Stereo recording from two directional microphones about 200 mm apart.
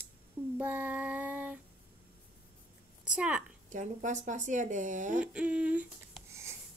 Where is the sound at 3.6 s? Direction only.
40° right (ahead or behind).